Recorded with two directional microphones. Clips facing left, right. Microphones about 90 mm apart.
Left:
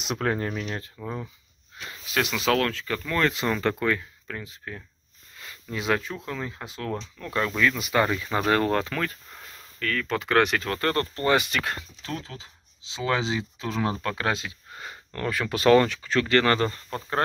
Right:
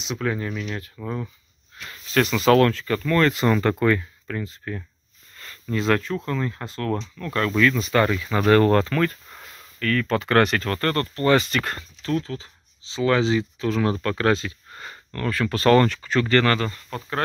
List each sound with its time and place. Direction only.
0.0 s speech: 50° left (ahead or behind)
2.0 s speech: 5° left (ahead or behind)
8.6 s speech: 5° left (ahead or behind)
11.5 s speech: 5° left (ahead or behind)
16.4 s speech: 30° left (ahead or behind)